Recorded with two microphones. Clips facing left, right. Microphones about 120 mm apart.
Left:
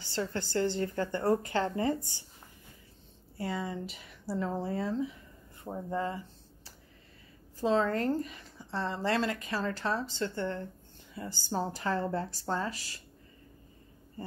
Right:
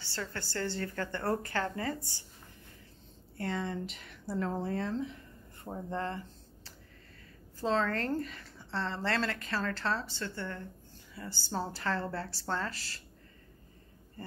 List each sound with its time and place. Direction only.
0.0 s speech: 20° left (ahead or behind)
3.3 s speech: 5° left (ahead or behind)
14.2 s a sound: 15° left (ahead or behind)